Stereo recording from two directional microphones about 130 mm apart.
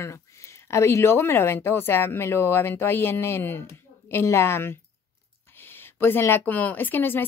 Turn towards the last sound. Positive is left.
turn(degrees=15)  # may be behind; listen again after turning